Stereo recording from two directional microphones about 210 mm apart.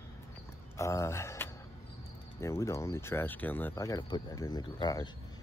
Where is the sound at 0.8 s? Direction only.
15° left (ahead or behind).